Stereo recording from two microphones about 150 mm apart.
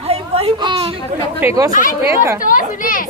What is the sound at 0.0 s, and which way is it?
Whimper, 45° right (ahead or behind).